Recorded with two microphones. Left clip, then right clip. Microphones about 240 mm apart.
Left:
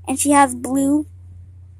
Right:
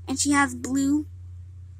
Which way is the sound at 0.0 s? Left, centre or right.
Centre.